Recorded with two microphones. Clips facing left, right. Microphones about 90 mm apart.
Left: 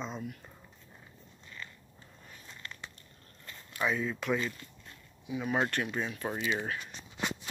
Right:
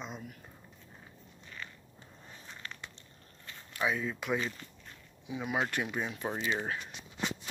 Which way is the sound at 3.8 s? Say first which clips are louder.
Left 1 dB; 5° right (ahead or behind).